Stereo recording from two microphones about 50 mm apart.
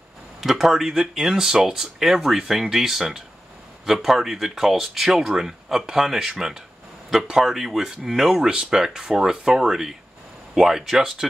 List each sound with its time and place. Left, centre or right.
0.4 s speech: centre